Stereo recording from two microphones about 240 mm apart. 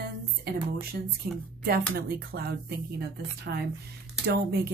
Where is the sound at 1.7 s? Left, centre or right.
Right.